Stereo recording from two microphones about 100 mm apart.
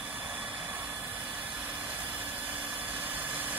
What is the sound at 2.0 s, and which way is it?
Engine, 65° right (ahead or behind).